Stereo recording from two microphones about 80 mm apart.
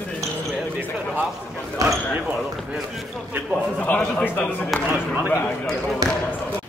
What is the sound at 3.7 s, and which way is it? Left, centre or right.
Speech, centre.